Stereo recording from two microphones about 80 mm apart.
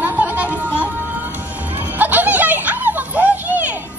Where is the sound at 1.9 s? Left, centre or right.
Right.